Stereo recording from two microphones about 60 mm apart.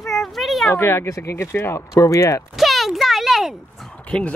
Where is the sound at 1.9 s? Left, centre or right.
Left.